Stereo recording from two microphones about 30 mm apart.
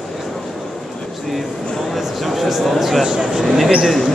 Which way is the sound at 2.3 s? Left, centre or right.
Centre.